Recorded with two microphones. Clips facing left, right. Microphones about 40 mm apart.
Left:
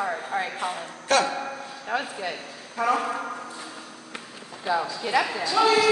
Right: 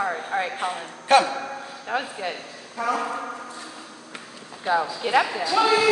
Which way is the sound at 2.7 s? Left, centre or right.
Centre.